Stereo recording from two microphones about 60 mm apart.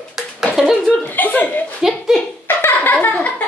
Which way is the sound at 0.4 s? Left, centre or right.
Centre.